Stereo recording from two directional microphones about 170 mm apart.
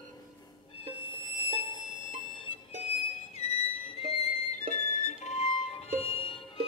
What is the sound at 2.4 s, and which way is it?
Music, 35° left (ahead or behind).